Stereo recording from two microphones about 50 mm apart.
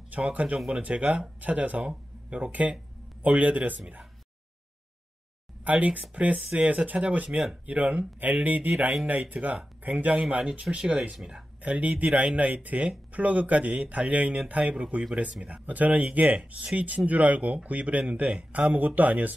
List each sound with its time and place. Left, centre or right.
0.1 s speech: right
1.8 s speech: centre
3.2 s speech: right
5.6 s speech: right